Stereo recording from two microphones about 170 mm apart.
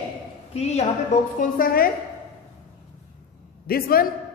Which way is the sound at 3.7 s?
60° left (ahead or behind).